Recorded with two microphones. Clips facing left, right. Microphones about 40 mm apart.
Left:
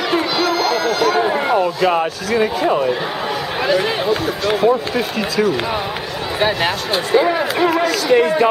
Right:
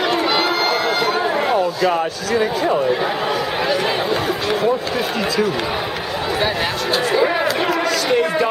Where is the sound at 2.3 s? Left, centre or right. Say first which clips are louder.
Left 1 dB; centre.